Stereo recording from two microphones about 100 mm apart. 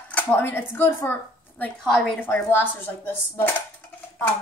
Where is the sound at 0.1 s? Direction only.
20° left (ahead or behind).